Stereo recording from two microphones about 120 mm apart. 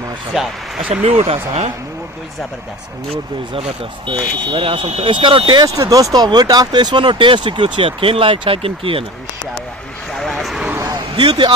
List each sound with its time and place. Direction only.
0.3 s speech: 5° right (ahead or behind)
1.0 s speech: 50° right (ahead or behind)
3.1 s speech: 50° right (ahead or behind)
10.1 s speech: centre (ahead or behind)
10.8 s a sound: 35° right (ahead or behind)